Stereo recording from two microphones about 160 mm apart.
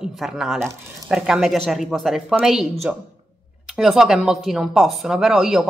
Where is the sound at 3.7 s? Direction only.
Centre (ahead or behind).